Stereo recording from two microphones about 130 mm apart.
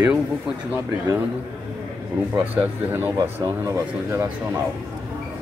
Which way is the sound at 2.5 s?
15° right (ahead or behind).